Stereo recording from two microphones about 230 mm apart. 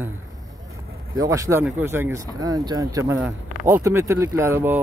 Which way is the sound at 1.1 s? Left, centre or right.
Centre.